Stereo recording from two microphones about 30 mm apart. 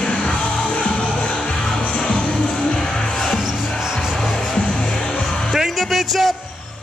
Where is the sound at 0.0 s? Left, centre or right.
Left.